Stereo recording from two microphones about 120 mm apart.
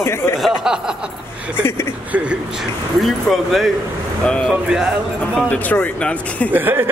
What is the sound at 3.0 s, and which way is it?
Speech, centre (ahead or behind).